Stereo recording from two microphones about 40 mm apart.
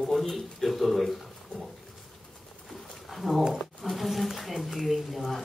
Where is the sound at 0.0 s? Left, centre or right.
Centre.